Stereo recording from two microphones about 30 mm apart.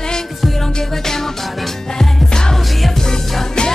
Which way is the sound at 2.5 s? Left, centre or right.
Centre.